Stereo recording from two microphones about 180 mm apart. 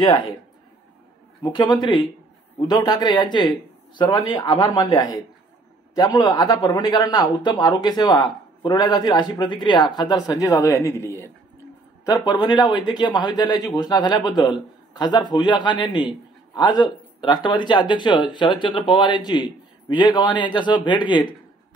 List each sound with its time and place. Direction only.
0.0 s a man's voice: 25° left (ahead or behind)
1.4 s a man's voice: 25° left (ahead or behind)